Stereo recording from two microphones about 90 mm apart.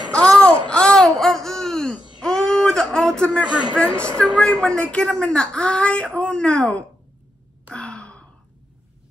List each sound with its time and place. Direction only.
0.1 s babbling: 10° left (ahead or behind)
2.2 s wail: 5° left (ahead or behind)
3.7 s speech: 10° left (ahead or behind)
7.7 s sigh: 10° left (ahead or behind)